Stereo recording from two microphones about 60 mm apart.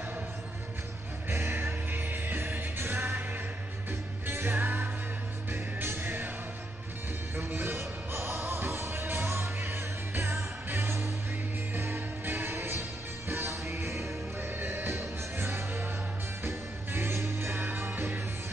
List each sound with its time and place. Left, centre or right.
1.3 s music: right
4.3 s music: right
7.3 s music: right
14.6 s music: right